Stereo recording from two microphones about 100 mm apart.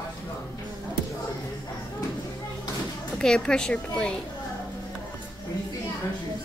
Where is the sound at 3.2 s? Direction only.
5° left (ahead or behind).